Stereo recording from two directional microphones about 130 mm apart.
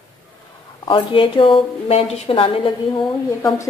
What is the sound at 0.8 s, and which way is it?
A woman's voice, 40° left (ahead or behind).